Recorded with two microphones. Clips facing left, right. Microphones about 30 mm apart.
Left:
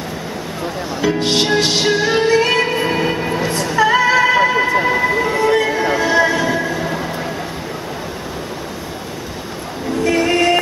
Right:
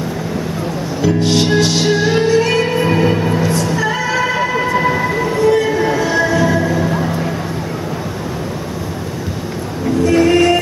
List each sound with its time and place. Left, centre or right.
1.0 s speech: left
1.9 s music: centre
2.7 s music: centre
3.4 s music: left
4.7 s a sound: centre
5.2 s music: left
6.6 s vehicle: centre
10.1 s music: centre